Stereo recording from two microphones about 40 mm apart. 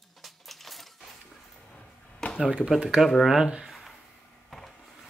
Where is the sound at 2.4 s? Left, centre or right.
Centre.